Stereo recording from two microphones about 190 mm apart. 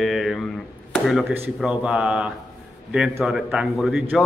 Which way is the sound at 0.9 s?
Centre (ahead or behind).